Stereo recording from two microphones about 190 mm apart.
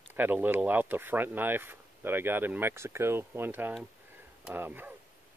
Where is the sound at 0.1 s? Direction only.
10° right (ahead or behind).